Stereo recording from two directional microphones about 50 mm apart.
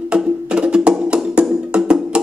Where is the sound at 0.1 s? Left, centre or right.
Right.